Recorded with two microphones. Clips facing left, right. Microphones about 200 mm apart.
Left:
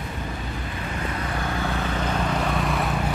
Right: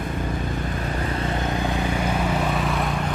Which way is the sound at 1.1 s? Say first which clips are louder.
Right 3 dB; 25° right (ahead or behind).